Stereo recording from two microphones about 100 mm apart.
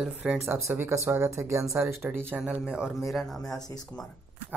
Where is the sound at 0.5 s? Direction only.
25° right (ahead or behind).